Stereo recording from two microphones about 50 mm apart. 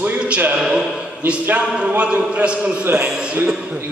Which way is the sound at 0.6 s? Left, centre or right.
Centre.